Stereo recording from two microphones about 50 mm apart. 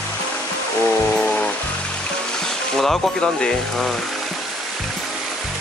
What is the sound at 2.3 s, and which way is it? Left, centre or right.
Speech, centre.